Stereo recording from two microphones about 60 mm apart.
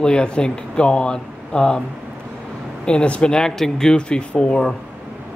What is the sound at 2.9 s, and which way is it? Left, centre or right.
Speech, centre.